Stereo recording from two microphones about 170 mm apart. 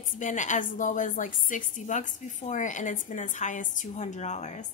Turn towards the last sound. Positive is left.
turn(degrees=40)  # may be behind; listen again after turning